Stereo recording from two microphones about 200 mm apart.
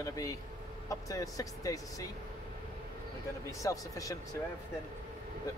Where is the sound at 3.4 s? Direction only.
15° left (ahead or behind).